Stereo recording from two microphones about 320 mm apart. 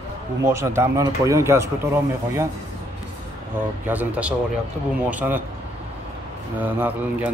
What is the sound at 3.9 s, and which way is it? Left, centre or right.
Speech, centre.